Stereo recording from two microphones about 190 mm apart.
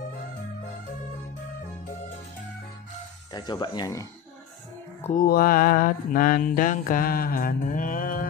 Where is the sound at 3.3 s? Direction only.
25° left (ahead or behind).